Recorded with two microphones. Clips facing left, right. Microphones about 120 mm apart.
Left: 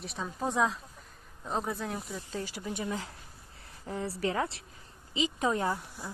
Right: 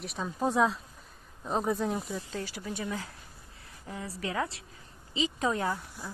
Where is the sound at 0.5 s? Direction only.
15° right (ahead or behind).